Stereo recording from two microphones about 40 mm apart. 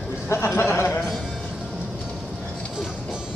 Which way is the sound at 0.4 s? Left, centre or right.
Left.